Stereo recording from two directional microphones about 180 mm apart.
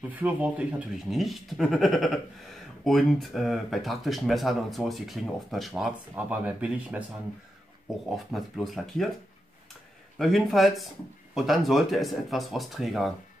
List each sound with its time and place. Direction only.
0.1 s speech: 10° right (ahead or behind)
8.1 s speech: centre (ahead or behind)
10.1 s speech: centre (ahead or behind)